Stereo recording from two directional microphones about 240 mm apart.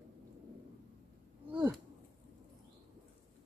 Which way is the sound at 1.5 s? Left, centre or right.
Centre.